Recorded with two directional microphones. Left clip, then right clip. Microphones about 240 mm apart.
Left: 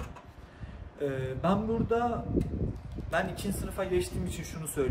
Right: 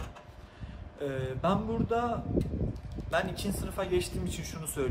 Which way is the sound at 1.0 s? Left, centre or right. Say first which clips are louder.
Left 1 dB; centre.